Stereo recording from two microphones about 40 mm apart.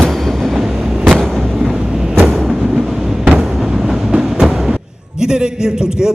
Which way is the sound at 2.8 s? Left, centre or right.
Centre.